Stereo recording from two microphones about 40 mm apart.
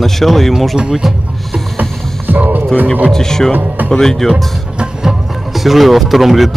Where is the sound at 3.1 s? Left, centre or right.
Centre.